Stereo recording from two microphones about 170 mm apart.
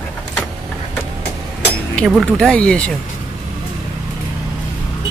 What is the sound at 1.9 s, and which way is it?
Speech, 5° left (ahead or behind).